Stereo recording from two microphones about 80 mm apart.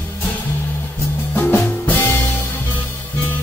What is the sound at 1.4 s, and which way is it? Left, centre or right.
Music, left.